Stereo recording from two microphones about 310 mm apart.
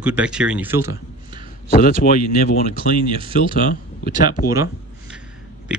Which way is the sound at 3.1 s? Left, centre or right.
Centre.